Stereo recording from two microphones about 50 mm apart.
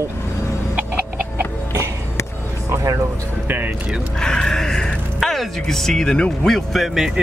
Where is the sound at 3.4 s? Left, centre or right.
Right.